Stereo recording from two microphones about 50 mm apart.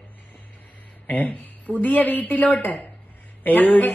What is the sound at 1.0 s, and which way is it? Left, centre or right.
A man's voice, left.